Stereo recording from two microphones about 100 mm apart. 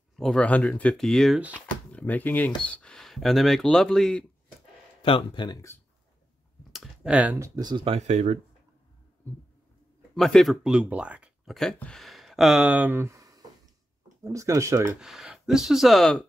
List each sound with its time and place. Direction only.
0.1 s a sound: 5° left (ahead or behind)
0.4 s speech: 15° left (ahead or behind)
1.9 s speech: 15° left (ahead or behind)
5.0 s speech: 60° left (ahead or behind)
6.7 s clicking: 5° right (ahead or behind)
7.3 s speech: 35° right (ahead or behind)
7.8 s speech: 85° right
10.1 s speech: 5° left (ahead or behind)
11.4 s speech: 5° left (ahead or behind); by 14.9 s 30° right (ahead or behind)
15.0 s speech: 5° right (ahead or behind)